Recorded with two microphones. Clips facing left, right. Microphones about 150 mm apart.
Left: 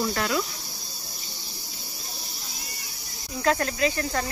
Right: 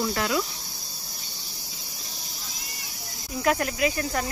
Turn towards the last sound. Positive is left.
turn(degrees=-15)  # may be behind; listen again after turning